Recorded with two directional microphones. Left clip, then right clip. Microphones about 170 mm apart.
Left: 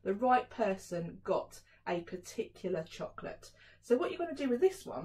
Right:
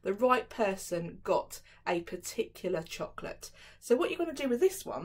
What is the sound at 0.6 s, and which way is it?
Speech, 20° right (ahead or behind).